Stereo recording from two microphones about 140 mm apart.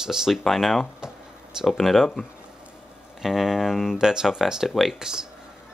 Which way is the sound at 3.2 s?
Centre (ahead or behind).